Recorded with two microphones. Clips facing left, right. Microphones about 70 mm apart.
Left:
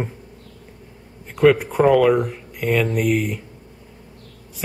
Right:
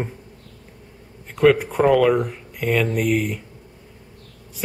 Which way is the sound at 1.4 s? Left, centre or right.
Centre.